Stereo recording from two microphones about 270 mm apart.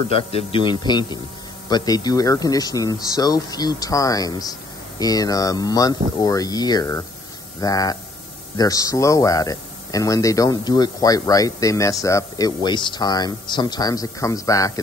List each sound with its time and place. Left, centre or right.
0.1 s speech: left